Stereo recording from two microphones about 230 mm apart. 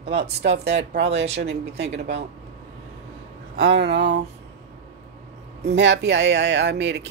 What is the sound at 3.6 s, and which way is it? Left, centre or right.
Speech, right.